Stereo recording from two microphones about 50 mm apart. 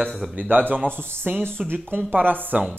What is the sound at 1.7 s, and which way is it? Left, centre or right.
Speech, right.